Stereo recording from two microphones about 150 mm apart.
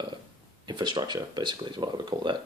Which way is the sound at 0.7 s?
30° right (ahead or behind).